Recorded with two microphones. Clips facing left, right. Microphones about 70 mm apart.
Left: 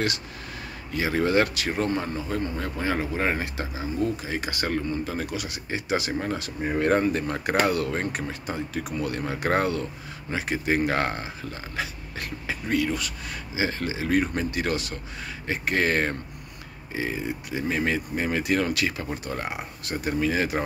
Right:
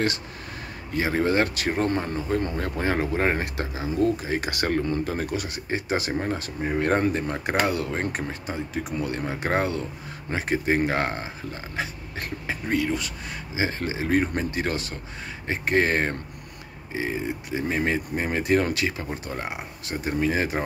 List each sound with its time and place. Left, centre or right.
0.9 s speech: right
7.2 s speech: right
10.3 s speech: right
10.9 s speech: centre